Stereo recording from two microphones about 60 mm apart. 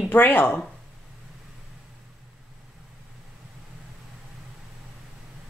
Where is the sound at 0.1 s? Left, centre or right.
Left.